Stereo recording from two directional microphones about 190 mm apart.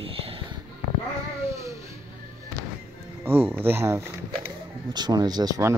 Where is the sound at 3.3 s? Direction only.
10° right (ahead or behind).